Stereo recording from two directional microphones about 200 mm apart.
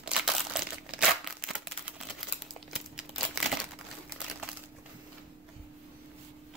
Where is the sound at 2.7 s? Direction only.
Centre (ahead or behind).